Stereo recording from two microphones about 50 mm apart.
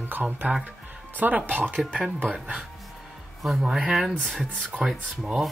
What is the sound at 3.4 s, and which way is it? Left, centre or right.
Speech, centre.